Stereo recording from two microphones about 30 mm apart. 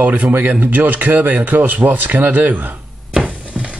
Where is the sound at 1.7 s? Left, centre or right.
Right.